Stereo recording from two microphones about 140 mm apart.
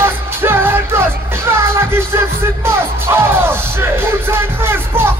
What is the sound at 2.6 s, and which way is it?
Music, 20° right (ahead or behind).